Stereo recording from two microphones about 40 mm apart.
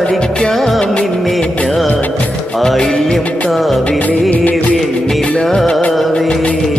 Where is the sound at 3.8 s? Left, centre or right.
Left.